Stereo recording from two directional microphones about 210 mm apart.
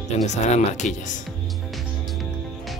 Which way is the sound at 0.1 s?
30° left (ahead or behind).